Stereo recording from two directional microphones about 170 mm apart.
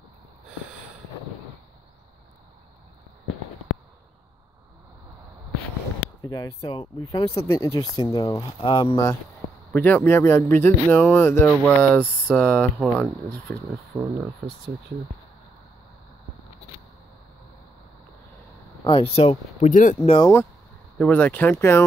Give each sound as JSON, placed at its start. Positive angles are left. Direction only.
{"t": 6.2, "sound": "speech", "side_deg": 25}
{"t": 9.7, "sound": "speech", "side_deg": 10}
{"t": 18.9, "sound": "speech", "side_deg": 30}
{"t": 20.1, "sound": "speech", "side_deg": 25}
{"t": 21.0, "sound": "speech", "side_deg": 10}